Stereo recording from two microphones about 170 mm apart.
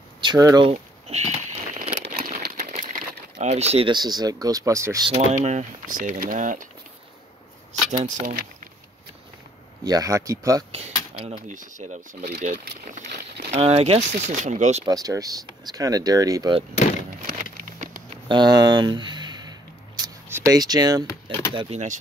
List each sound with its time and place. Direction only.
0.2 s speech: 25° right (ahead or behind)
0.7 s a sound: 40° right (ahead or behind)
2.3 s crumpling: 45° right (ahead or behind); by 5.0 s 20° right (ahead or behind)
5.1 s speech: 40° right (ahead or behind)
7.9 s speech: 45° right (ahead or behind)
9.8 s speech: 20° right (ahead or behind)
10.7 s keys jangling: 40° right (ahead or behind)
11.4 s speech: 50° right (ahead or behind)
14.9 s speech: 20° right (ahead or behind)
17.3 s a sound: 55° right (ahead or behind)
18.1 s a sound: 25° right (ahead or behind)
21.5 s speech: 40° right (ahead or behind)